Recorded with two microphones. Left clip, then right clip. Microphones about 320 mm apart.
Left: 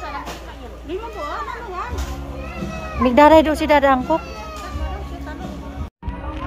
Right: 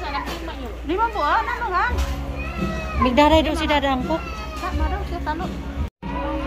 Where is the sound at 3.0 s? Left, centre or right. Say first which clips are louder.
Left 5 dB; centre.